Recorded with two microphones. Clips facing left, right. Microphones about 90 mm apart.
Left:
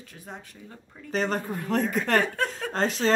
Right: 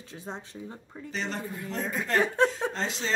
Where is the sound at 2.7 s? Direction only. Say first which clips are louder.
Left 7 dB; 50° left (ahead or behind).